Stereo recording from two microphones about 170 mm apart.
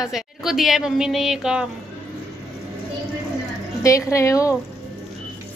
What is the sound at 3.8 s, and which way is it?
Speech, 20° left (ahead or behind).